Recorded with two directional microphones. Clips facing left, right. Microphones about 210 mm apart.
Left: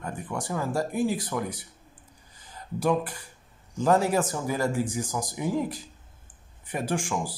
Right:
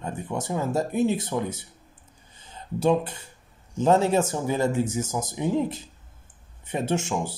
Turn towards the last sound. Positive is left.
turn(degrees=-25)  # may be behind; listen again after turning